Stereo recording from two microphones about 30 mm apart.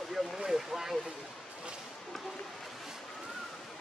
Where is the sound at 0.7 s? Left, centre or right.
Centre.